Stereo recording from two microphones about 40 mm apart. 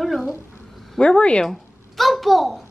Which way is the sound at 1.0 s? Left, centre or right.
Left.